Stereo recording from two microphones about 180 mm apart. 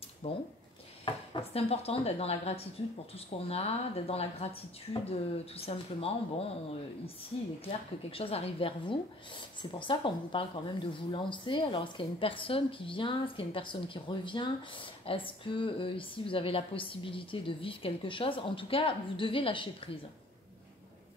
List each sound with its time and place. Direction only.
0.2 s speech: 35° left (ahead or behind)
8.1 s speech: 30° left (ahead or behind)